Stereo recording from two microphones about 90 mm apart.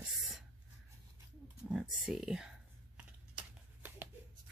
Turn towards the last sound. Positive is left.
turn(degrees=-25)  # may be behind; listen again after turning